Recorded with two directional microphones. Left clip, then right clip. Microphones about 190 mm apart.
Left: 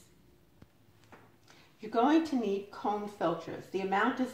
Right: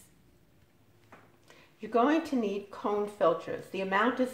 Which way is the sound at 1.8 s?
30° right (ahead or behind).